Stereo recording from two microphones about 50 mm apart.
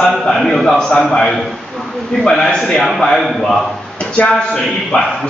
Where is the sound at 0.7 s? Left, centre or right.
Centre.